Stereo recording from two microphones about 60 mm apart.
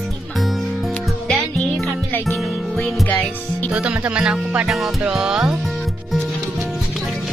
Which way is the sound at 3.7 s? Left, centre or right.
Right.